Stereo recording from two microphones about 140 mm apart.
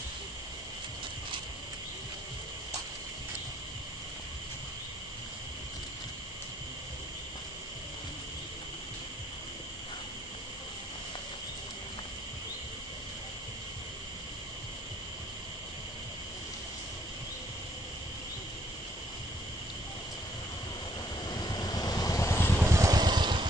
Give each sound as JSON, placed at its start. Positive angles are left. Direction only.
{"t": 21.3, "sound": "vehicle", "side_deg": 30}
{"t": 22.7, "sound": "vehicle", "side_deg": -25}